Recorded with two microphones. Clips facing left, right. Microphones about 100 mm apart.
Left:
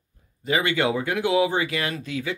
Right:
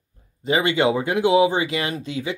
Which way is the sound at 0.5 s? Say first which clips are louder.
Right 3 dB; 25° right (ahead or behind).